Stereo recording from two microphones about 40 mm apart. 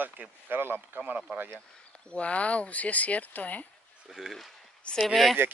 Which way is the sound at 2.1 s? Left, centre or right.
Left.